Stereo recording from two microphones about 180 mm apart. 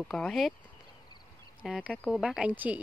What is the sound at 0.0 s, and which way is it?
Speech, centre (ahead or behind).